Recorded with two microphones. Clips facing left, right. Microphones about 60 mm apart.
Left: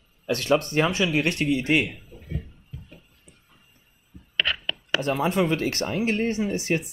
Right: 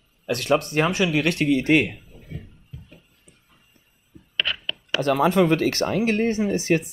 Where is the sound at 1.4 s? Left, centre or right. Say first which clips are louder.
Right 4 dB; right.